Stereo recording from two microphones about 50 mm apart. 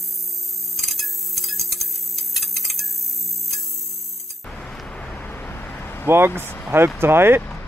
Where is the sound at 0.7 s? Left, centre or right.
Centre.